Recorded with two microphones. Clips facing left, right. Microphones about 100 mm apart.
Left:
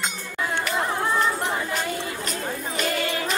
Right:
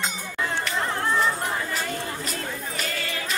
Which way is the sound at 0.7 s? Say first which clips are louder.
Left 2 dB; 5° left (ahead or behind).